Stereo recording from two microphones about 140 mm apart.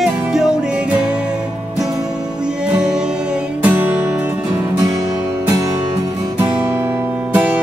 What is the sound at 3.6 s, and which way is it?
Music, 10° right (ahead or behind).